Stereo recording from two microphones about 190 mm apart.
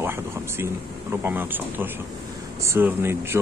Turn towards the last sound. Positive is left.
turn(degrees=-15)  # may be behind; listen again after turning